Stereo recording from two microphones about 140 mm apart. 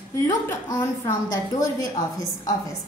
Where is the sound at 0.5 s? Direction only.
20° left (ahead or behind).